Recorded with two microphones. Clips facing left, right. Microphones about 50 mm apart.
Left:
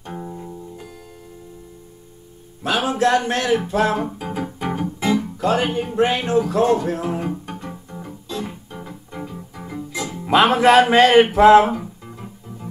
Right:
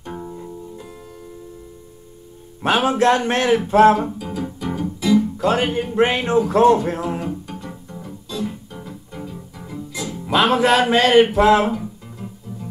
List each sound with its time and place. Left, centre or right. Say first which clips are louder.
0.1 s music: even; centre
2.6 s speech: right 3 dB; right
4.2 s music: left 1 dB; left
5.4 s speech: right 1 dB; right
7.0 s music: even; left